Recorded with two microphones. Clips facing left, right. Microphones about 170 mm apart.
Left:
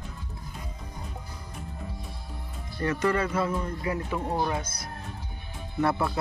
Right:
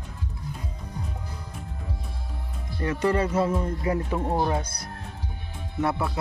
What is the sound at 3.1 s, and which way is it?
Speech, 30° right (ahead or behind).